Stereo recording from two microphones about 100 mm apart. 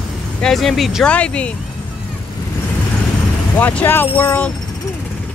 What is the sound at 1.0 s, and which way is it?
Speech, 10° left (ahead or behind).